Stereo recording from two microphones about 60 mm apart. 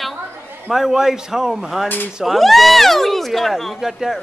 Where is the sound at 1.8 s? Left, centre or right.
Left.